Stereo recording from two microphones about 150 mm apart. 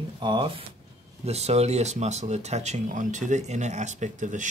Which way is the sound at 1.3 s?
45° right (ahead or behind).